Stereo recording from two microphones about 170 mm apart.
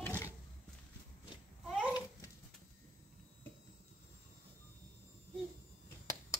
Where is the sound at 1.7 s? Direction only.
5° right (ahead or behind).